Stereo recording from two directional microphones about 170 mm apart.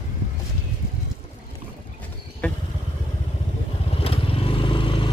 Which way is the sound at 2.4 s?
5° left (ahead or behind).